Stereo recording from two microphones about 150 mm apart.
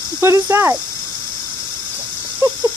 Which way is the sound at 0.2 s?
15° right (ahead or behind).